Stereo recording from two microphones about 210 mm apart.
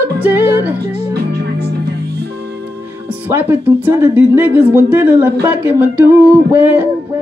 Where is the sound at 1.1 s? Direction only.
50° right (ahead or behind).